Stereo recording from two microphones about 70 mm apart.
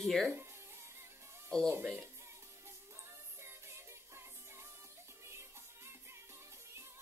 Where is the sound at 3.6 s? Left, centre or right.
Right.